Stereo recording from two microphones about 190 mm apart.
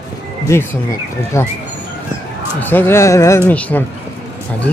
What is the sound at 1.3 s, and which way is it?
Speech, 15° left (ahead or behind).